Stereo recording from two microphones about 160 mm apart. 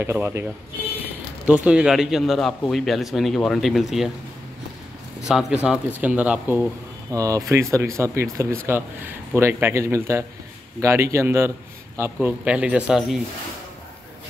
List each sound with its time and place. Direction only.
0.0 s a man's voice: 15° right (ahead or behind)
1.5 s speech: 5° right (ahead or behind)
5.2 s a man's voice: 5° right (ahead or behind)
7.1 s a man's voice: 20° right (ahead or behind); by 13.2 s 5° right (ahead or behind)